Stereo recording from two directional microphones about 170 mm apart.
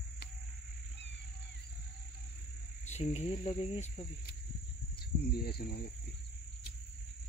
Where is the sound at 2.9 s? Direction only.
40° left (ahead or behind).